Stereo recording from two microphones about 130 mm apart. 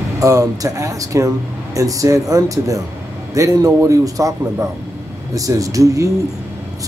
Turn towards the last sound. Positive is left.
turn(degrees=-25)  # may be behind; listen again after turning